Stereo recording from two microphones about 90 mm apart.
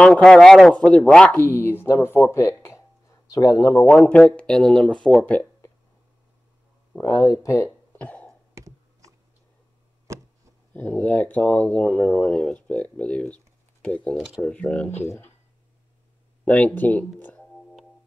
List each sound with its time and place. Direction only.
0.0 s speech: 10° left (ahead or behind)
1.3 s speech: 25° left (ahead or behind); by 3.7 s 40° left (ahead or behind)
3.8 s speech: 15° left (ahead or behind)
7.0 s speech: 40° left (ahead or behind)
7.6 s a sound: 15° left (ahead or behind)
8.5 s computer keyboard: 35° right (ahead or behind)
10.1 s chopping: 35° right (ahead or behind)
10.7 s speech: 20° left (ahead or behind)
16.4 s speech: 15° left (ahead or behind)
17.2 s music: 20° left (ahead or behind)